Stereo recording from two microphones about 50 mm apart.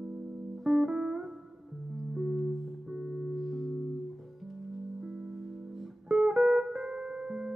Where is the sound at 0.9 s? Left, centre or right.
Centre.